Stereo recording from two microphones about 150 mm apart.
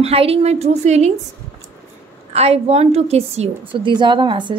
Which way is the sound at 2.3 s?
45° right (ahead or behind).